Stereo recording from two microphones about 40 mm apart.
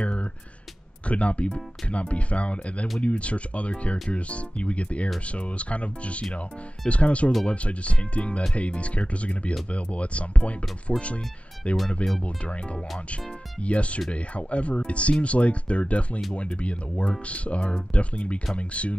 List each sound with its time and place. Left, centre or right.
0.0 s a sound: left
1.0 s speech: left
13.6 s speech: left